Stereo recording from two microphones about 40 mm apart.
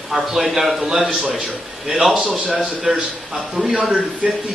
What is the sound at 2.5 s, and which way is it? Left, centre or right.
Speech, right.